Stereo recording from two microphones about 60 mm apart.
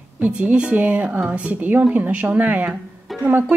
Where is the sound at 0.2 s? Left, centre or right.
Right.